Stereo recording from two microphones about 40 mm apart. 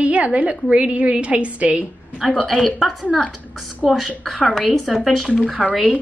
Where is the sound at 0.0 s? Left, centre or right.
Right.